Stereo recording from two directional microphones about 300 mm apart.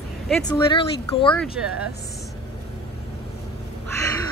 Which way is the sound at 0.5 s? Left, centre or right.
Centre.